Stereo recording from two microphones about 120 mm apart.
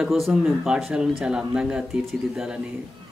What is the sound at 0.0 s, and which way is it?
Speech, 5° right (ahead or behind).